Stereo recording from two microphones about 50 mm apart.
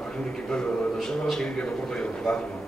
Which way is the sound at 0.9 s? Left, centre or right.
Centre.